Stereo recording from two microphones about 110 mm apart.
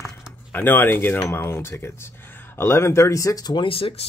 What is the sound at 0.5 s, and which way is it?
Speech, 20° left (ahead or behind).